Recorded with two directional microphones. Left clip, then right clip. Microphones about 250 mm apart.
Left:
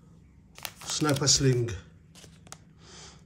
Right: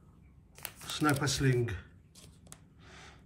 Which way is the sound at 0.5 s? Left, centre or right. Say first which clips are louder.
Left 6 dB; centre.